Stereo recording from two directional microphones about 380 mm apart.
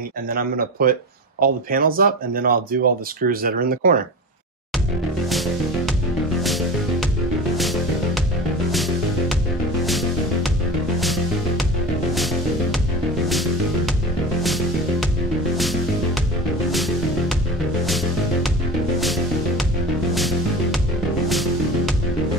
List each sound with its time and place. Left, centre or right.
0.3 s speech: right
5.3 s music: centre